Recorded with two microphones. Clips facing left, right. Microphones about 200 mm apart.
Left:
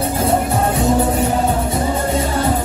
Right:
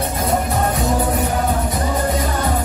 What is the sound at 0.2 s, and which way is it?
Music, 30° left (ahead or behind).